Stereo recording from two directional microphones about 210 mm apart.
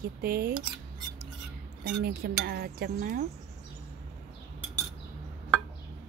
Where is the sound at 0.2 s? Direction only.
45° right (ahead or behind).